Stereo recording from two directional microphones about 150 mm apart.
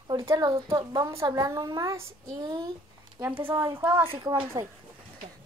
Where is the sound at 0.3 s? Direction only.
25° right (ahead or behind).